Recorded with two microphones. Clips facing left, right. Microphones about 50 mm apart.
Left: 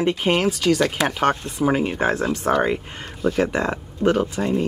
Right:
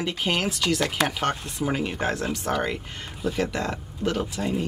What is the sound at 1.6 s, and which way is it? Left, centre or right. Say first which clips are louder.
Speech: left 6 dB; centre.